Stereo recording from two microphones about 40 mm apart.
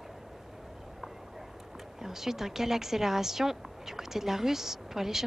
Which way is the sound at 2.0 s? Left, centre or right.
Centre.